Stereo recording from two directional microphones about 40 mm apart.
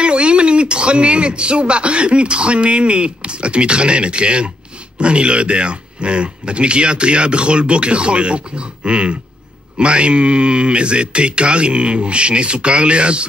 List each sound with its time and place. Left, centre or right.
0.0 s a man's voice: right